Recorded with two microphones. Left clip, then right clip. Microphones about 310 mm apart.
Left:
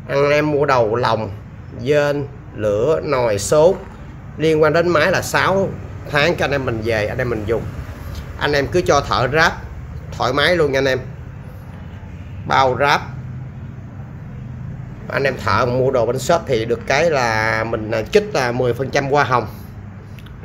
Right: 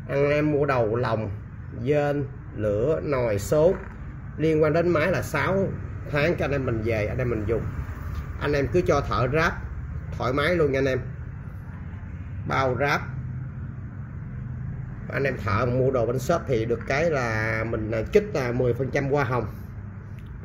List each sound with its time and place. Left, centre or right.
0.1 s speech: centre
12.4 s speech: centre
15.0 s speech: centre